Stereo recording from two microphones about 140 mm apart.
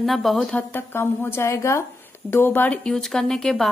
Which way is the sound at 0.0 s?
Centre (ahead or behind).